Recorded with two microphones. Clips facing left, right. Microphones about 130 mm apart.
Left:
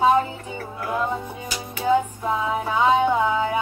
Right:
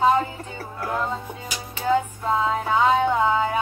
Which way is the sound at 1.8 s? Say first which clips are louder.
Left 1 dB; 15° left (ahead or behind).